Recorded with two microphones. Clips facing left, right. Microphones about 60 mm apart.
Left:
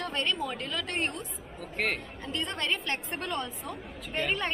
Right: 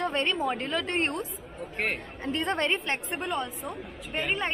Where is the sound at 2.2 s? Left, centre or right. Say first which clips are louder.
Right 6 dB; right.